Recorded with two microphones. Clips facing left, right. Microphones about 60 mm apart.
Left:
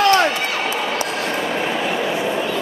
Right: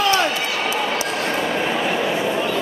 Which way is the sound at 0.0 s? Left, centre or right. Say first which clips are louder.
Left 4 dB; left.